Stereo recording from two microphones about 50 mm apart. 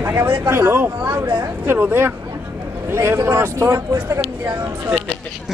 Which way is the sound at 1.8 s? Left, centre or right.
Right.